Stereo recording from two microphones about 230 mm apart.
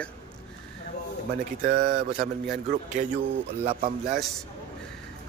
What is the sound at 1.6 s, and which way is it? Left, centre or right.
A man's voice, right.